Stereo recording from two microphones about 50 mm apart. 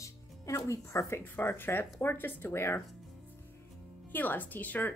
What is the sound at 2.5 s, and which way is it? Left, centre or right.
Speech, left.